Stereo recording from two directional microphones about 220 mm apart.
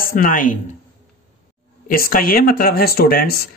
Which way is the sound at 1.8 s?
40° left (ahead or behind).